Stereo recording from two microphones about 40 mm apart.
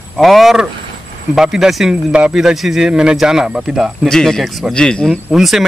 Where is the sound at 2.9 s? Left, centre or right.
Right.